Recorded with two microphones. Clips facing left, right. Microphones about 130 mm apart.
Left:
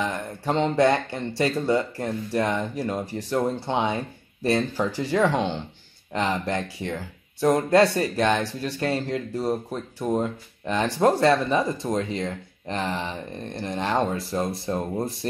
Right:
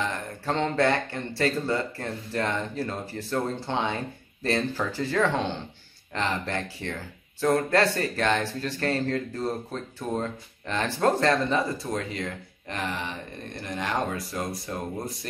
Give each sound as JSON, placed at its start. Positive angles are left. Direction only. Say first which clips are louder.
{"t": 0.0, "sound": "speech", "louder": "left 3 dB", "side_deg": 15}